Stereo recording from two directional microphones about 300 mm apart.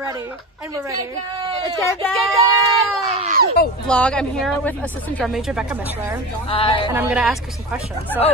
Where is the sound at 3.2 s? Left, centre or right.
Right.